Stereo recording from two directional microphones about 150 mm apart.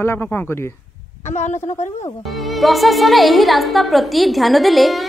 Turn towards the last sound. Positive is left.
turn(degrees=0)  # may be behind; listen again after turning